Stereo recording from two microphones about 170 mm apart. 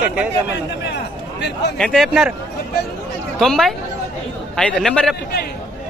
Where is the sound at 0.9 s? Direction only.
90° left.